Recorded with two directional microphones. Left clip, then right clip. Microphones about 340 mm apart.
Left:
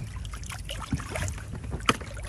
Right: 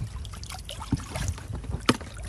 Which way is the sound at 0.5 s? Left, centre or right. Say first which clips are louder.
Right 1 dB; centre.